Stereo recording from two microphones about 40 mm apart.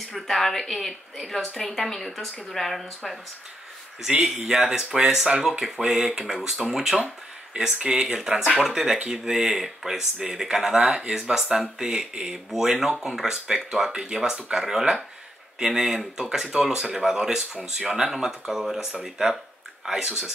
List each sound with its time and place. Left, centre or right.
0.1 s a woman's voice: centre
4.2 s speech: centre
9.2 s speech: centre